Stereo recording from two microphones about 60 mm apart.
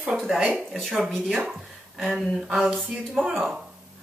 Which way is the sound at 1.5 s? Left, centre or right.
Centre.